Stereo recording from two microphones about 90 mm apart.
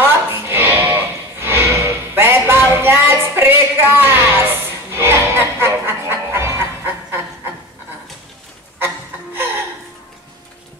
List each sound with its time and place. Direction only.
0.0 s music: 25° right (ahead or behind)
8.7 s music: 25° right (ahead or behind)